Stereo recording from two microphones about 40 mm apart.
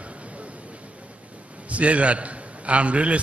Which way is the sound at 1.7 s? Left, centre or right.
Right.